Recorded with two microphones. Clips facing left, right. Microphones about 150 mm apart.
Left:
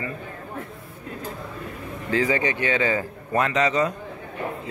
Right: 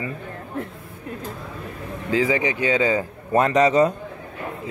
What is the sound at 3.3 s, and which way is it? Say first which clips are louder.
Speech: right 5 dB; 35° right (ahead or behind).